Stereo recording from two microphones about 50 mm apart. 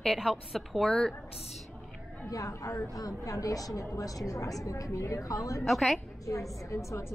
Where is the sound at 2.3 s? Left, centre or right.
Left.